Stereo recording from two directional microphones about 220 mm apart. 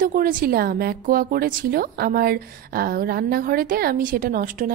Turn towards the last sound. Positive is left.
turn(degrees=-40)  # may be behind; listen again after turning